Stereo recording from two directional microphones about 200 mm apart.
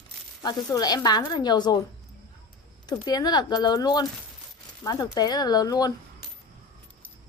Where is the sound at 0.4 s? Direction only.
20° left (ahead or behind).